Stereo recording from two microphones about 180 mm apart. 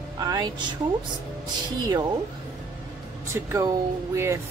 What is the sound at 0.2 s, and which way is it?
Speech, 20° right (ahead or behind).